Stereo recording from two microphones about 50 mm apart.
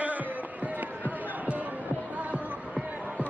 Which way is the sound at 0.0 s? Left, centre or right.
Right.